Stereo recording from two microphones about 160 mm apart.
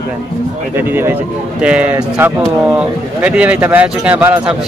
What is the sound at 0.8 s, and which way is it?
Speech, 15° right (ahead or behind).